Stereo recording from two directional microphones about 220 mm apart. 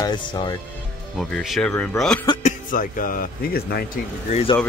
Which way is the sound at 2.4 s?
35° left (ahead or behind).